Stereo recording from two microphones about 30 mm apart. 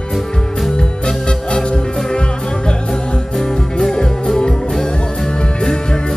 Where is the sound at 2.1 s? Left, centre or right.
Left.